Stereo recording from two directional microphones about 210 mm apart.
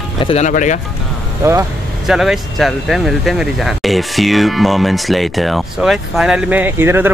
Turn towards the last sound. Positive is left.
turn(degrees=-10)  # may be behind; listen again after turning